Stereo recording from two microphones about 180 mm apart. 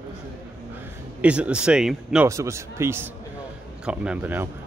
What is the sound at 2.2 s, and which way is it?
A man's voice, 15° right (ahead or behind).